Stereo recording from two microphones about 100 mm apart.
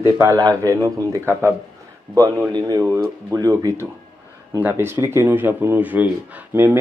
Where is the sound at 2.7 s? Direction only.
30° right (ahead or behind).